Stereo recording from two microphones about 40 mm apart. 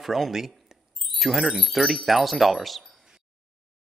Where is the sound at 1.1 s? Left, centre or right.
Centre.